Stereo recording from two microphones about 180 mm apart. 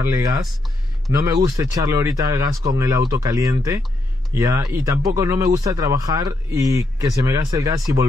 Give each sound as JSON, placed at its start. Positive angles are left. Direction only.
{"t": 0.0, "sound": "speech", "side_deg": -20}